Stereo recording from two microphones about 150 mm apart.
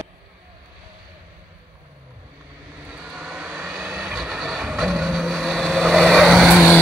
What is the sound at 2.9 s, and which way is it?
Vehicle, 5° right (ahead or behind).